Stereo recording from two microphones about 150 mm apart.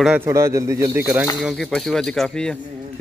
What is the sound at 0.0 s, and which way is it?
Speech, 5° right (ahead or behind).